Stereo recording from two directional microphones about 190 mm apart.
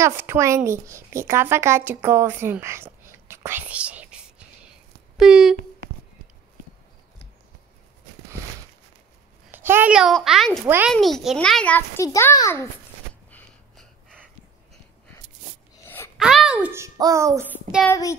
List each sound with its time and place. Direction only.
0.0 s speech: 10° right (ahead or behind)
9.5 s a child's voice: 10° right (ahead or behind)
10.6 s a child's voice: 10° right (ahead or behind)
10.9 s a child's voice: centre (ahead or behind)
16.2 s a child's voice: 5° right (ahead or behind)
17.8 s a child's voice: 15° left (ahead or behind)